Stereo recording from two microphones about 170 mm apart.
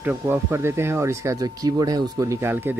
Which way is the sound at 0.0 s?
10° right (ahead or behind).